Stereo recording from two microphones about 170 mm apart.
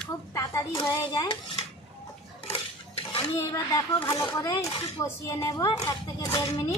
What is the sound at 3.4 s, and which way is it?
Speech, 15° left (ahead or behind).